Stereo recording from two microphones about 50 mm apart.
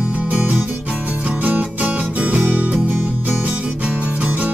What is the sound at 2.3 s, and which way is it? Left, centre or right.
Music, right.